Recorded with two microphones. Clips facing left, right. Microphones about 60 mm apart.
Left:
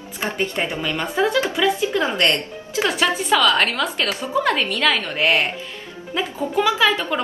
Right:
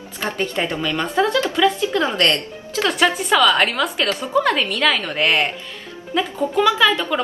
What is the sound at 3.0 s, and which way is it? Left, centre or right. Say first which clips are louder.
A woman's voice: right 3 dB; centre.